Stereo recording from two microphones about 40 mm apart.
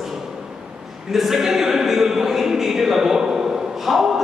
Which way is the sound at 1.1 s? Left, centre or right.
Centre.